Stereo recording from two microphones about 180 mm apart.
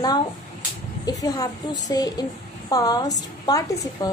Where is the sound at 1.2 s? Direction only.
20° left (ahead or behind).